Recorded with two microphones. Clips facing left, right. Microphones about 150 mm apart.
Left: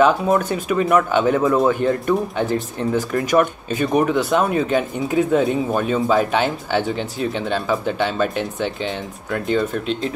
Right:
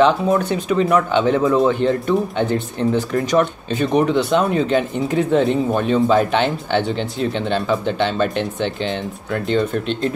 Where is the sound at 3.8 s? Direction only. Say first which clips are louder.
Right 1 dB; 5° left (ahead or behind).